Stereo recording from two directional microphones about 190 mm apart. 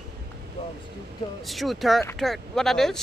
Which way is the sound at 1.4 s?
Centre (ahead or behind).